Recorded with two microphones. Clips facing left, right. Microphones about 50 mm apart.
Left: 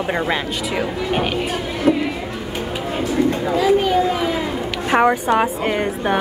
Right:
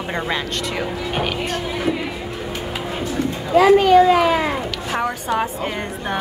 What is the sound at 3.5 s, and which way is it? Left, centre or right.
Speech, right.